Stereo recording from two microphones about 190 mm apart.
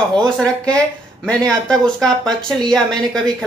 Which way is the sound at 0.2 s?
5° left (ahead or behind).